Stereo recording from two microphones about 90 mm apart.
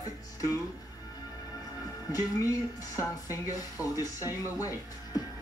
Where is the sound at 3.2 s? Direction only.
40° left (ahead or behind).